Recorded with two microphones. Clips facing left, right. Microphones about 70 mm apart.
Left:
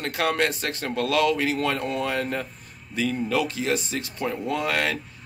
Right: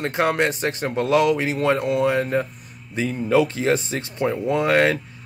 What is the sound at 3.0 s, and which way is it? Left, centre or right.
A man's voice, right.